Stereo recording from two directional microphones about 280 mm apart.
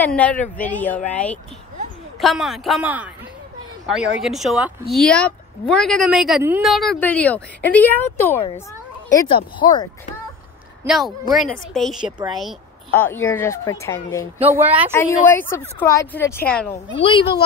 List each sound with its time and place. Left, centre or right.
0.0 s speech: centre
10.8 s a woman's voice: centre
14.4 s speech: centre
14.9 s speech: centre
17.0 s speech: centre